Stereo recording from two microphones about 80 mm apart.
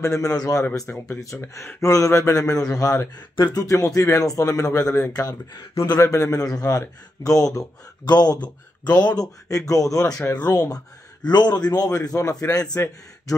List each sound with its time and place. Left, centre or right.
0.0 s speech: left
0.7 s speech: left
1.2 s speech: left
5.9 s speech: left
6.3 s speech: left